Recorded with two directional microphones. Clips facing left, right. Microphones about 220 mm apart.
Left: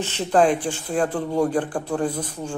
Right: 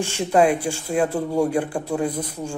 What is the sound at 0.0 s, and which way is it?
Speech, 10° right (ahead or behind).